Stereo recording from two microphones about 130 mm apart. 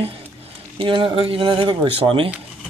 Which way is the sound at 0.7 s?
40° right (ahead or behind).